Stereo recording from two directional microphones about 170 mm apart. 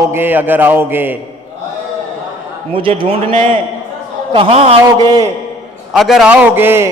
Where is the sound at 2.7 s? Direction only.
30° right (ahead or behind).